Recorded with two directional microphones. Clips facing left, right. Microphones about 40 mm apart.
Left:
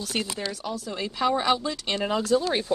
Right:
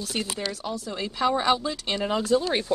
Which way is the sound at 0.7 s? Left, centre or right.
Centre.